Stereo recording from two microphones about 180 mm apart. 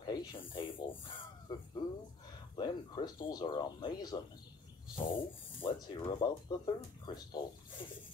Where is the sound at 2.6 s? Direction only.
25° left (ahead or behind).